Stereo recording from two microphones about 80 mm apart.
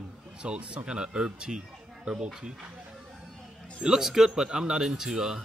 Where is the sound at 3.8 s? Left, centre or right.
Centre.